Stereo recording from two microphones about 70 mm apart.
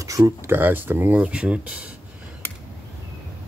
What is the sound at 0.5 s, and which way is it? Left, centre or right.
Speech, right.